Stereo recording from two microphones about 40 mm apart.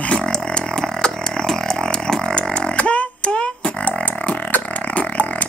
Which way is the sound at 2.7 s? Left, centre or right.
Left.